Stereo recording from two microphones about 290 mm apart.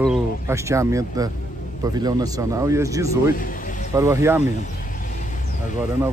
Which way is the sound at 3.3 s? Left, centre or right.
Left.